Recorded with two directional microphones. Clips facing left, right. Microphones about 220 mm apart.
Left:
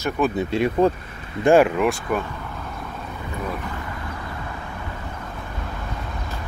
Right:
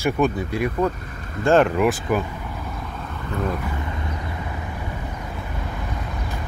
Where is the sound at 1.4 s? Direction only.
10° left (ahead or behind).